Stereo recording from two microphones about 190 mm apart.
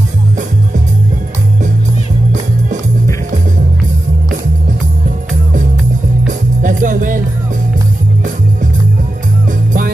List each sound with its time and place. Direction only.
6.2 s music: 45° right (ahead or behind)